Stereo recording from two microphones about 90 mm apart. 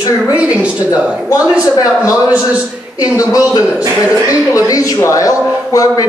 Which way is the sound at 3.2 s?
40° left (ahead or behind).